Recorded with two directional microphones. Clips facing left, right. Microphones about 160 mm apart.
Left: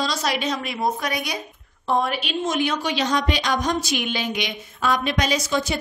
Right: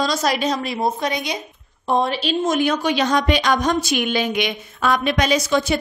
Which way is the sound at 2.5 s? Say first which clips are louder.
Right 4 dB; 45° right (ahead or behind).